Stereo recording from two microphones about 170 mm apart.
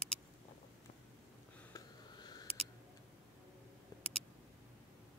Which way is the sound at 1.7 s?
25° left (ahead or behind).